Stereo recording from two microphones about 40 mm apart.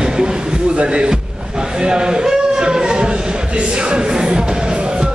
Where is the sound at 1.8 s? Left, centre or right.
Centre.